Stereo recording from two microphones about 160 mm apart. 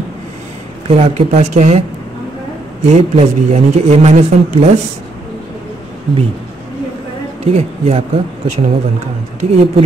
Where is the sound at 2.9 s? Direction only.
45° right (ahead or behind).